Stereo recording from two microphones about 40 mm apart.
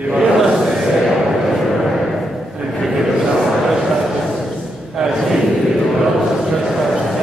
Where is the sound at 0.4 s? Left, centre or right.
Centre.